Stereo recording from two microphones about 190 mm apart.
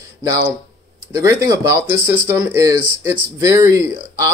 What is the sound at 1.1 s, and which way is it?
Speech, 15° right (ahead or behind).